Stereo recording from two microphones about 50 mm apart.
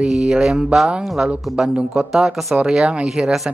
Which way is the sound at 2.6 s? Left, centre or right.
Centre.